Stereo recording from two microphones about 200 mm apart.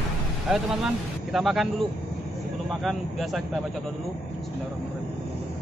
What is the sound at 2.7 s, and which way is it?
Speech, centre (ahead or behind).